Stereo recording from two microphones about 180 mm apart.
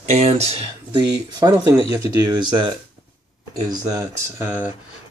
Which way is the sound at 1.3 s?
20° right (ahead or behind).